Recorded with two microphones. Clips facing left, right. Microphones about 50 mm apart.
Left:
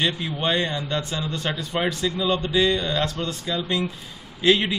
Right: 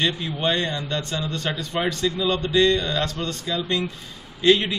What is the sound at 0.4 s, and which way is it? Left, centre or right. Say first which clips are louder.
A man's voice: even; centre.